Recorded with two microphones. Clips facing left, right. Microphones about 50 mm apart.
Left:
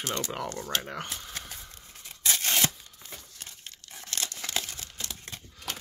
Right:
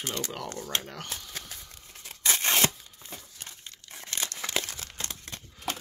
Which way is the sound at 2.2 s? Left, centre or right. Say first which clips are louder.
Right 2 dB; right.